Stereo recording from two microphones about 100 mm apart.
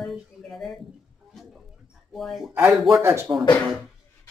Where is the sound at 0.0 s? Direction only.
Centre (ahead or behind).